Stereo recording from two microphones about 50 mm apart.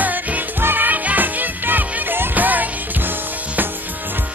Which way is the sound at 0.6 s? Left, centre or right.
Right.